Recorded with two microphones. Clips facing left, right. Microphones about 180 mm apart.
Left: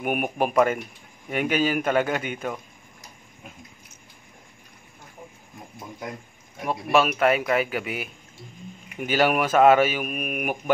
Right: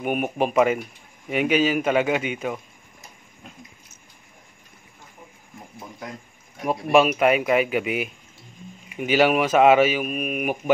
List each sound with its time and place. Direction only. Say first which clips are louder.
0.0 s speech: right 1 dB; 5° left (ahead or behind)
0.5 s speech: right 1 dB; 10° right (ahead or behind)
6.6 s speech: right 3 dB; centre (ahead or behind)
7.2 s speech: right 2 dB; 15° right (ahead or behind)
9.0 s speech: right 3 dB; 10° right (ahead or behind)
10.0 s speech: right 3 dB; 5° left (ahead or behind)